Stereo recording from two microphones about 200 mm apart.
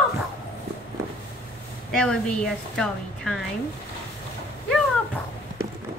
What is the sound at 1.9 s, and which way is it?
A woman's voice, 5° left (ahead or behind).